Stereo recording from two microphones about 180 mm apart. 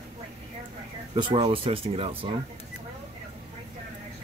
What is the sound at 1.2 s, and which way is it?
Speech, 30° right (ahead or behind).